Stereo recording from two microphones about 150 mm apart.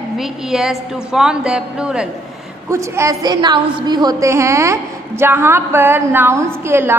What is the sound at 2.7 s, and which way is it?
A woman's voice, 20° right (ahead or behind).